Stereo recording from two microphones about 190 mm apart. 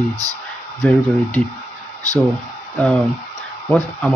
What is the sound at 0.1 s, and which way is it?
Speech, 20° right (ahead or behind).